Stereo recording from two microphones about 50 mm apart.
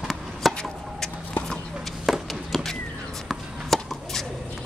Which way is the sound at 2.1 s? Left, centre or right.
Centre.